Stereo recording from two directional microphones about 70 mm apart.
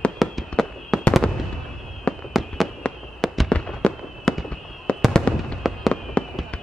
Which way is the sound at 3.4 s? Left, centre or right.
Centre.